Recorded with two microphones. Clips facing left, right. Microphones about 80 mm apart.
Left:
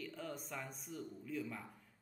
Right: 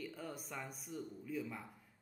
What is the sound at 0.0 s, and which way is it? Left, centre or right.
Speech, centre.